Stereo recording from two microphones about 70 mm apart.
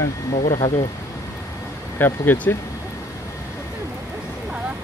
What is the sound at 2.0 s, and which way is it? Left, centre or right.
Speech, left.